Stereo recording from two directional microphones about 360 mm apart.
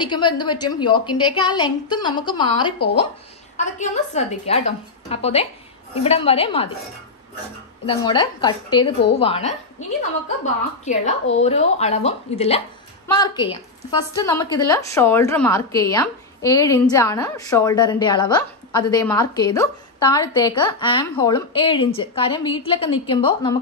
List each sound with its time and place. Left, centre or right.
0.0 s speech: centre
7.9 s a woman's voice: centre